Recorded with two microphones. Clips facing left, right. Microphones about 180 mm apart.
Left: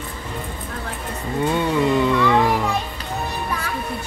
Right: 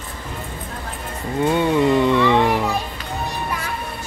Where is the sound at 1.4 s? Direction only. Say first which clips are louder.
Right 3 dB; 20° right (ahead or behind).